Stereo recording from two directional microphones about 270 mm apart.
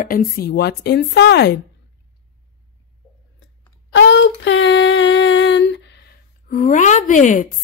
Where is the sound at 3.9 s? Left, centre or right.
Left.